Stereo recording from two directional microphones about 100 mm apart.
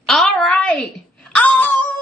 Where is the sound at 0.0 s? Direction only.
5° left (ahead or behind).